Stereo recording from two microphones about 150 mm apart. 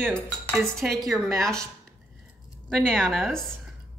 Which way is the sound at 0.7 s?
Centre (ahead or behind).